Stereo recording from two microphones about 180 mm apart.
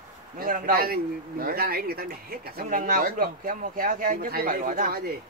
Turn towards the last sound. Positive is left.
turn(degrees=-50)  # may be behind; listen again after turning